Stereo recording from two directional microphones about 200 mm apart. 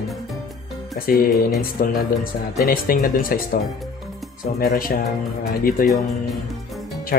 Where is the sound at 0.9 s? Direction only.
45° left (ahead or behind).